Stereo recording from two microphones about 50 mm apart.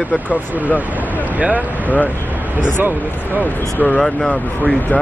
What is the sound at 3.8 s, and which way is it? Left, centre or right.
Speech, left.